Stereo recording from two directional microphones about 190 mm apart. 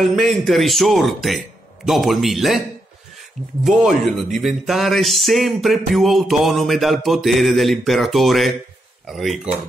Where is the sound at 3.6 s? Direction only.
Centre (ahead or behind).